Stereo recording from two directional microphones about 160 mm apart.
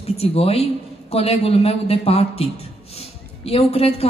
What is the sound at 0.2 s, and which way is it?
A woman's voice, 40° left (ahead or behind).